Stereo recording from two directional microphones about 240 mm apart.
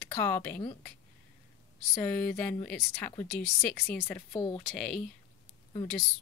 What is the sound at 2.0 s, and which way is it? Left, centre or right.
Speech, centre.